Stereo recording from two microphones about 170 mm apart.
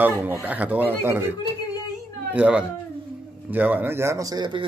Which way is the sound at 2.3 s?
5° right (ahead or behind).